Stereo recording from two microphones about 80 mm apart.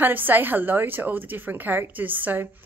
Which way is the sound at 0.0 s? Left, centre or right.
Right.